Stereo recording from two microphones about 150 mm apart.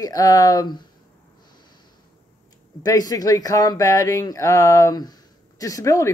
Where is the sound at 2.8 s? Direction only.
25° left (ahead or behind).